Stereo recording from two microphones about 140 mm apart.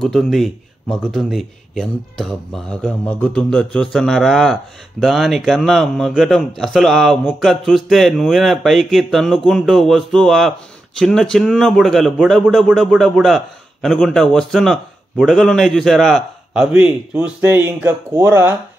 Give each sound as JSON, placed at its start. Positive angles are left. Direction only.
{"t": 0.0, "sound": "a man's voice", "side_deg": 5}
{"t": 16.7, "sound": "speech", "side_deg": -10}